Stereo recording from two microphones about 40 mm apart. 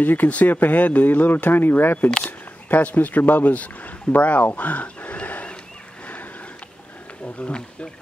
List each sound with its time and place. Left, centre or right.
0.0 s speech: left
2.0 s speech: centre
2.7 s speech: left
4.6 s a sound: left